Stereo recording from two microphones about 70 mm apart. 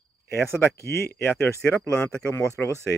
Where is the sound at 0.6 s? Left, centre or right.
Left.